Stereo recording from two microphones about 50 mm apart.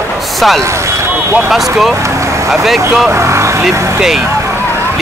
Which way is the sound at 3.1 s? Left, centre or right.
Right.